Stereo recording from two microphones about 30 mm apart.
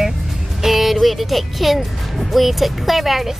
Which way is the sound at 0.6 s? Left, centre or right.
Centre.